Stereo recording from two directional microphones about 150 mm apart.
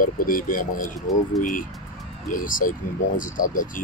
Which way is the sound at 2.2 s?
65° left (ahead or behind).